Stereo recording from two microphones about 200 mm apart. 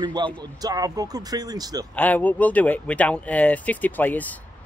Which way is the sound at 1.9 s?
10° left (ahead or behind).